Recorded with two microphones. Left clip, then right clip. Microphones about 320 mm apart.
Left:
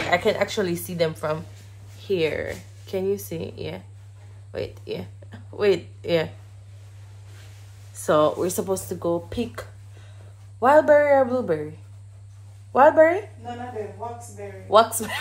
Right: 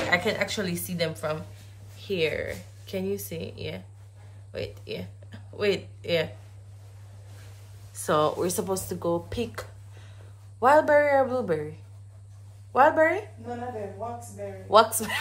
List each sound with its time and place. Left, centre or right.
0.1 s a woman's voice: centre
8.0 s speech: centre
12.7 s speech: centre
14.7 s speech: centre